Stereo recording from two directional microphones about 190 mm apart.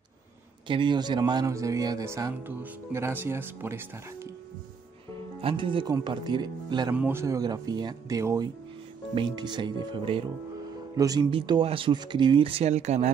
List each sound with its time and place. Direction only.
0.7 s speech: 25° right (ahead or behind)
5.4 s speech: 25° right (ahead or behind)
6.9 s speech: 10° right (ahead or behind); by 13.1 s 35° right (ahead or behind)